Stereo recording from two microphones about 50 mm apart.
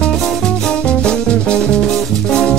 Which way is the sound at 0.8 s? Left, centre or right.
Left.